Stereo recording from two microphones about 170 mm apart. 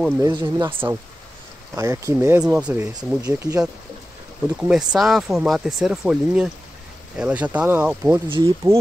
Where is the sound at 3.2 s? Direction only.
20° right (ahead or behind).